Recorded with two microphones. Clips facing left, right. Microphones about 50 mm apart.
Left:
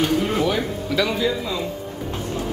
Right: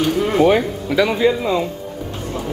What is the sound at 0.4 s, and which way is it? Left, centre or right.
Speech, right.